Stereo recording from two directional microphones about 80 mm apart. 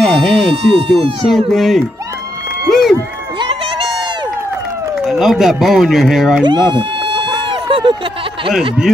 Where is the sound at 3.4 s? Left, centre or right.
Right.